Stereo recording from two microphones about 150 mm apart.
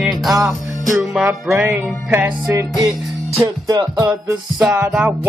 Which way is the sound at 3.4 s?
25° right (ahead or behind).